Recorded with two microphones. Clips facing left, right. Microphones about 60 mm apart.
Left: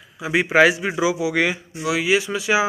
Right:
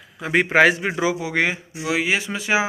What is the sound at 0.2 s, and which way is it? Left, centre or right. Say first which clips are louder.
A man's voice: even; right.